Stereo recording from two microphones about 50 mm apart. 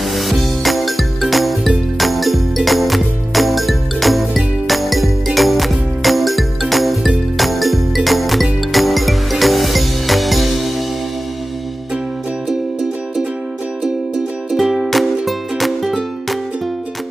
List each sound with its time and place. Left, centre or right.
0.0 s music: centre
14.5 s music: centre